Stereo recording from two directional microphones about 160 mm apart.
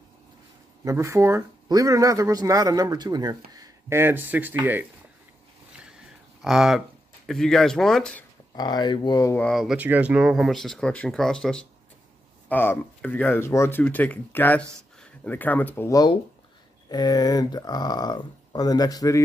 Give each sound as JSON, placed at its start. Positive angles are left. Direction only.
{"t": 0.8, "sound": "speech", "side_deg": -20}
{"t": 5.7, "sound": "a sound", "side_deg": -5}
{"t": 7.2, "sound": "speech", "side_deg": 5}
{"t": 8.5, "sound": "speech", "side_deg": 25}
{"t": 9.4, "sound": "speech", "side_deg": 0}
{"t": 9.8, "sound": "speech", "side_deg": -10}